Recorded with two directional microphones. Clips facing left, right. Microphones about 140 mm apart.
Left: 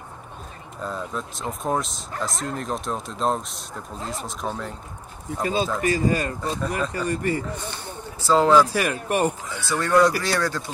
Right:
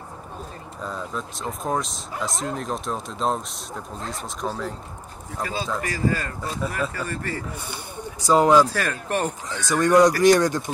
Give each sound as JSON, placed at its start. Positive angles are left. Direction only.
{"t": 0.8, "sound": "speech", "side_deg": 0}
{"t": 5.4, "sound": "speech", "side_deg": 20}
{"t": 7.5, "sound": "speech", "side_deg": -10}
{"t": 8.6, "sound": "speech", "side_deg": 15}
{"t": 9.7, "sound": "speech", "side_deg": -15}